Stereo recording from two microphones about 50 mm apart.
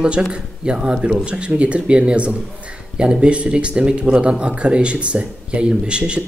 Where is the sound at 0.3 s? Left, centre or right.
Centre.